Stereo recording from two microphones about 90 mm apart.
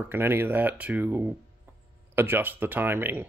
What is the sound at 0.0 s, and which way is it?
Speech, 25° right (ahead or behind).